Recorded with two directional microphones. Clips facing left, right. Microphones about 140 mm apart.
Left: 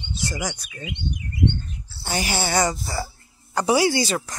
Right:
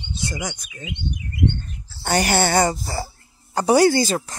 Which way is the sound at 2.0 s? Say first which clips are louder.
Right 6 dB; 60° right (ahead or behind).